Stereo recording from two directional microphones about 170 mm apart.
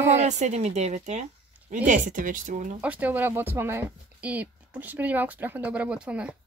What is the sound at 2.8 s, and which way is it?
Speech, 10° right (ahead or behind).